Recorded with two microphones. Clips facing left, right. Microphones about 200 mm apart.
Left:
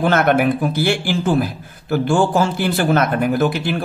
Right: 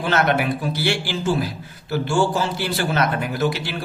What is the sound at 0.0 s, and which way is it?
A man's voice, 55° left (ahead or behind).